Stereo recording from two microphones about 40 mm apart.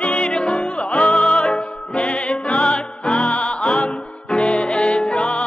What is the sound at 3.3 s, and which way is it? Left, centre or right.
Music, left.